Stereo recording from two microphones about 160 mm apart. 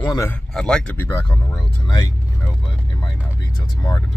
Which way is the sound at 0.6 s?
5° left (ahead or behind).